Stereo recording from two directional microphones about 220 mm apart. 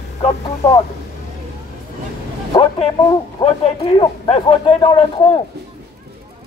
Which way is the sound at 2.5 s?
20° left (ahead or behind).